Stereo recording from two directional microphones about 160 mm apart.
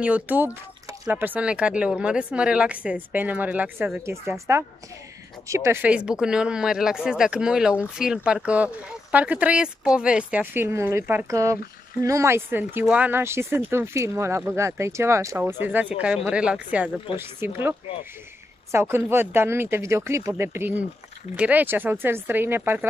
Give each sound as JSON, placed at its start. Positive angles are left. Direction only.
{"t": 0.0, "sound": "speech", "side_deg": -10}